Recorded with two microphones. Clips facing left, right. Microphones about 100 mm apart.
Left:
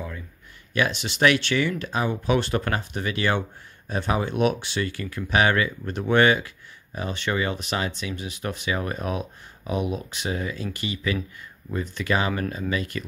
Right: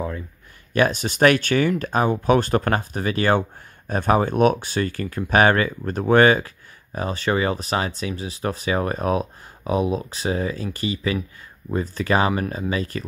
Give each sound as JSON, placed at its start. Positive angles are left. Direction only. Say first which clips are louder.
{"t": 0.7, "sound": "speech", "louder": "right 5 dB", "side_deg": -45}